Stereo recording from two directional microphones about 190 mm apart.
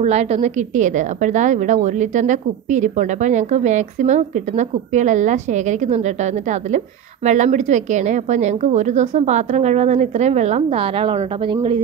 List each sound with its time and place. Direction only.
0.0 s a woman's voice: 35° right (ahead or behind)